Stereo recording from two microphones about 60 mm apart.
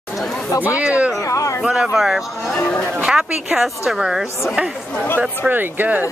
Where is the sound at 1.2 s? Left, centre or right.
Left.